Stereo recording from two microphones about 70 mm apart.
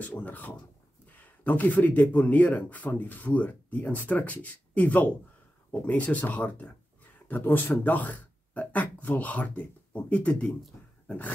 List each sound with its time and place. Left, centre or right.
0.0 s a man's voice: left
11.1 s dog: left